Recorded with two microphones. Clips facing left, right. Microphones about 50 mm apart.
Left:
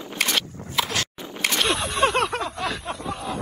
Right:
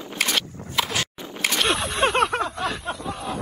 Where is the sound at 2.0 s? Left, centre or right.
Right.